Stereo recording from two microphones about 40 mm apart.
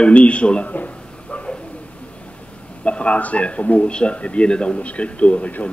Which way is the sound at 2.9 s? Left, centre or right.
Left.